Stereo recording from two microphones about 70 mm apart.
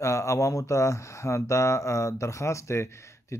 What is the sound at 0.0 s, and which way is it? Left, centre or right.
Speech, left.